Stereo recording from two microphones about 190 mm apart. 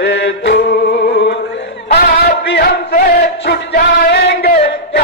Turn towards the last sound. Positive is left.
turn(degrees=60)  # may be behind; listen again after turning